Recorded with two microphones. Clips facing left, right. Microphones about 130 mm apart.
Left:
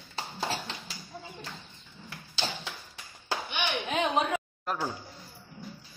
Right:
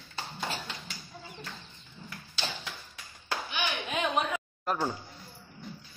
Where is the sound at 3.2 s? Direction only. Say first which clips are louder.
Left 1 dB; 25° left (ahead or behind).